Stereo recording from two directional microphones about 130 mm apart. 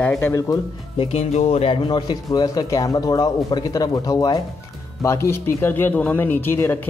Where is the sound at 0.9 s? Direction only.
55° left (ahead or behind).